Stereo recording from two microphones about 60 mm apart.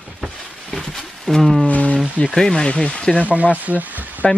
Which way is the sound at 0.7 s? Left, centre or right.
Centre.